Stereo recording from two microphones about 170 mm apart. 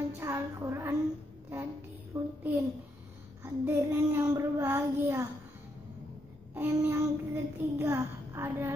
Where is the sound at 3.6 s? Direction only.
15° right (ahead or behind).